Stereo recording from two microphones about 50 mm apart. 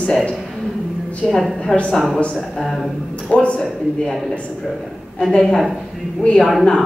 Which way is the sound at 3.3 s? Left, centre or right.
Left.